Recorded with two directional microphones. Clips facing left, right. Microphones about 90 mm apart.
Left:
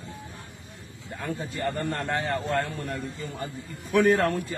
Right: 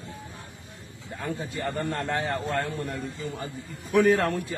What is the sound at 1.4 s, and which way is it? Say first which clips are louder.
A man's voice: left 2 dB; centre (ahead or behind).